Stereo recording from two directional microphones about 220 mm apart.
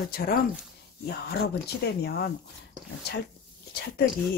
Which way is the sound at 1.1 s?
45° left (ahead or behind).